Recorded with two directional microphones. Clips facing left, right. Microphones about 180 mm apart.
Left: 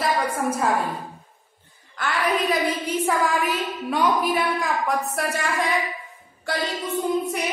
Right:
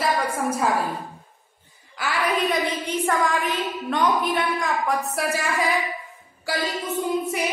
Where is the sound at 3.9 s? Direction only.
5° left (ahead or behind).